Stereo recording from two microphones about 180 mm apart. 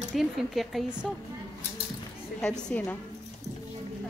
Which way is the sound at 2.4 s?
5° left (ahead or behind).